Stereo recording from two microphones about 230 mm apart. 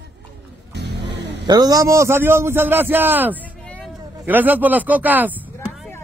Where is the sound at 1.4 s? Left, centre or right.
Centre.